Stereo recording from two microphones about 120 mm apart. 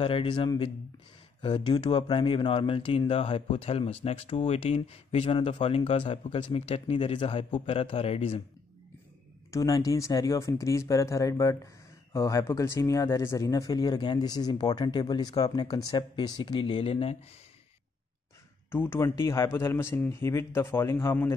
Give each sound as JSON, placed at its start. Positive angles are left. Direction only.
{"t": 0.0, "sound": "speech", "side_deg": 45}
{"t": 9.5, "sound": "speech", "side_deg": 30}
{"t": 18.7, "sound": "speech", "side_deg": 20}